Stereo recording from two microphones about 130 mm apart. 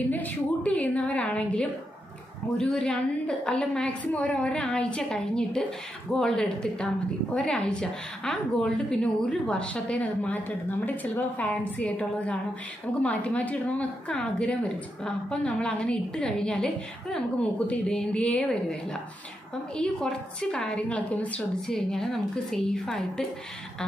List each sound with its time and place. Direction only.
0.1 s a woman's voice: 10° left (ahead or behind)
19.8 s a woman's voice: 5° left (ahead or behind)